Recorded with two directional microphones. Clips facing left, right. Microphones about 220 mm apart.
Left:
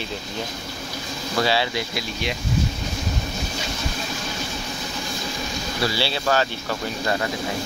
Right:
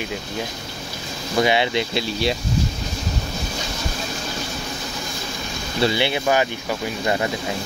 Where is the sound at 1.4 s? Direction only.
20° right (ahead or behind).